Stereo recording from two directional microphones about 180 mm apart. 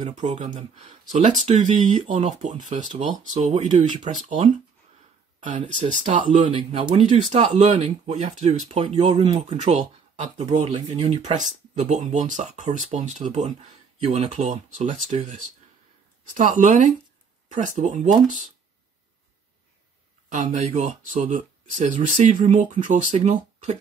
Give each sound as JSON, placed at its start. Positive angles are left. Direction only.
{"t": 0.0, "sound": "speech", "side_deg": -40}
{"t": 6.1, "sound": "speech", "side_deg": -30}
{"t": 16.3, "sound": "speech", "side_deg": -45}
{"t": 20.5, "sound": "speech", "side_deg": -40}